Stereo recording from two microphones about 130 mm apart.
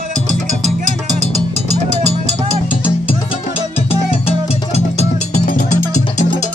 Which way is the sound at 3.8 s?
50° left (ahead or behind).